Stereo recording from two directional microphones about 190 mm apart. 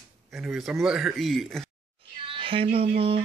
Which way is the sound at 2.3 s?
30° right (ahead or behind).